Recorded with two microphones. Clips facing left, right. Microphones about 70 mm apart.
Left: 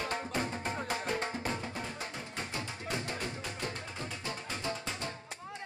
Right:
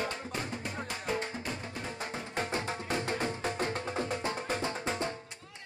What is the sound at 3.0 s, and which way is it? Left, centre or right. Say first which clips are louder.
Music: right 6 dB; right.